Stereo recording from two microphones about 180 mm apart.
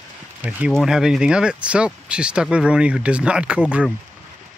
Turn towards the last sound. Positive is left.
turn(degrees=-5)  # may be behind; listen again after turning